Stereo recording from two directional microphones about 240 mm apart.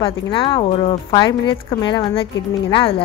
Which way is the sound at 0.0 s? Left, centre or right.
Left.